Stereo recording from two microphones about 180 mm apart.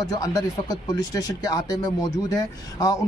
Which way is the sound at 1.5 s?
20° left (ahead or behind).